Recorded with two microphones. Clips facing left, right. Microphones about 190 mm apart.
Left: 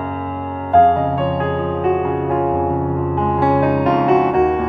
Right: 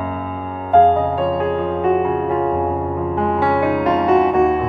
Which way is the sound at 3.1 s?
Centre (ahead or behind).